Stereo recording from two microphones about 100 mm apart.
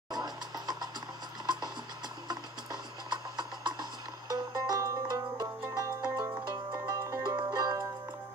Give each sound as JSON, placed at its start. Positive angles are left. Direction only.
{"t": 0.1, "sound": "music", "side_deg": -40}
{"t": 7.3, "sound": "music", "side_deg": -45}